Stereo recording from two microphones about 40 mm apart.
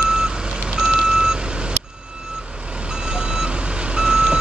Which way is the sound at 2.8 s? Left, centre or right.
Right.